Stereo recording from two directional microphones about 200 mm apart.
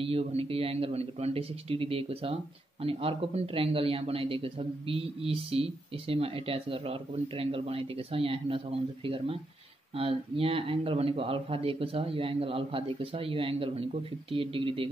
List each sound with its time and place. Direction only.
0.0 s speech: 30° right (ahead or behind)